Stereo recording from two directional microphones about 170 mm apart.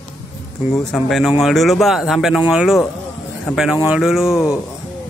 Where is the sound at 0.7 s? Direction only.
Centre (ahead or behind).